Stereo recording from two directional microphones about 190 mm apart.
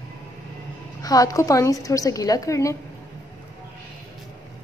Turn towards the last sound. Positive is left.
turn(degrees=15)  # may be behind; listen again after turning